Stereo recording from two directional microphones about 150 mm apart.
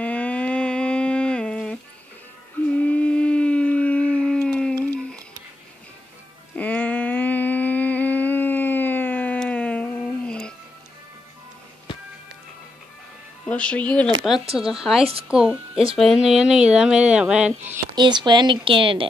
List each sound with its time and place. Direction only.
0.0 s a sound: 10° left (ahead or behind)
2.7 s howl: 10° left (ahead or behind)
6.5 s humming: 10° left (ahead or behind)
13.5 s speech: 10° left (ahead or behind)
14.6 s speech: 5° right (ahead or behind)
17.9 s speech: 30° right (ahead or behind)